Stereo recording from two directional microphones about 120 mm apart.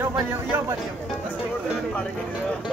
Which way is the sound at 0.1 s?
15° right (ahead or behind).